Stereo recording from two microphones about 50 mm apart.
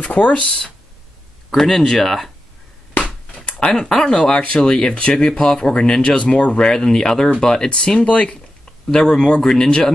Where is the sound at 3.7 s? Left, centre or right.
Centre.